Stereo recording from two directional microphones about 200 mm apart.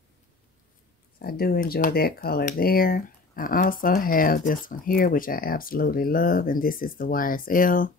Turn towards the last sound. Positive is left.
turn(degrees=45)  # may be behind; listen again after turning